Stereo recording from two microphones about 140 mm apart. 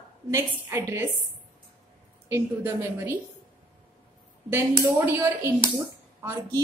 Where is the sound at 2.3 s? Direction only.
20° right (ahead or behind).